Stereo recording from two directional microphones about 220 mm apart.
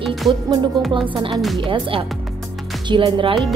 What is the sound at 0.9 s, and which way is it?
Speech, 20° right (ahead or behind).